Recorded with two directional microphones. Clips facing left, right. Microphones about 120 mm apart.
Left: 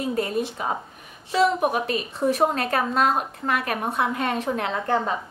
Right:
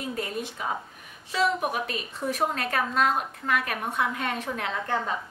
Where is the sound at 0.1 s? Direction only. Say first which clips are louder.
Left 7 dB; 35° left (ahead or behind).